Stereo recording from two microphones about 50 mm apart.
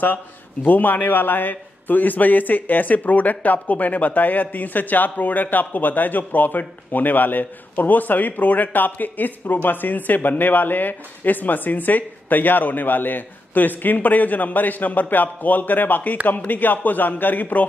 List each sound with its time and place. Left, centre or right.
0.7 s a man's voice: left